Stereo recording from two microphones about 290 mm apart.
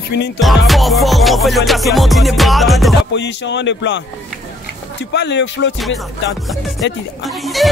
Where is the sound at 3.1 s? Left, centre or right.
Left.